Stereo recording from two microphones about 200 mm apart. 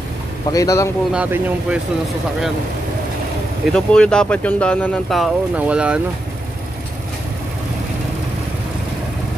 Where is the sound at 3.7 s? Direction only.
5° left (ahead or behind).